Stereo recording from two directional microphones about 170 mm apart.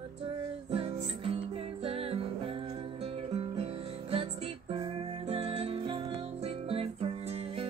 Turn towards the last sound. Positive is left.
turn(degrees=-35)  # may be behind; listen again after turning